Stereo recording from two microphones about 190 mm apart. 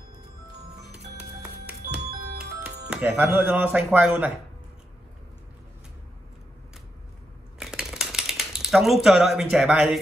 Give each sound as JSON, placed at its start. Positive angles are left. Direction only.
{"t": 0.9, "sound": "music", "side_deg": -5}
{"t": 2.0, "sound": "music", "side_deg": -55}
{"t": 2.6, "sound": "speech", "side_deg": -5}
{"t": 7.5, "sound": "a sound", "side_deg": 0}